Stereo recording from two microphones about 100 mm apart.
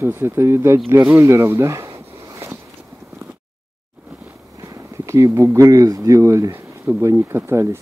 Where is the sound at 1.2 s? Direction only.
25° right (ahead or behind).